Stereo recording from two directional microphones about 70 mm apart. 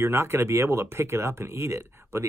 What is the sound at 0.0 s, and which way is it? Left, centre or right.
Speech, right.